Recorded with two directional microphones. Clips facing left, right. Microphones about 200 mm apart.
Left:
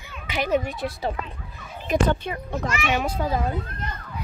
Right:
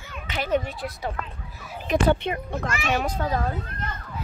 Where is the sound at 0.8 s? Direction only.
30° left (ahead or behind).